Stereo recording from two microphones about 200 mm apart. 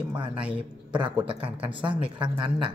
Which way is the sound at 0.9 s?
25° right (ahead or behind).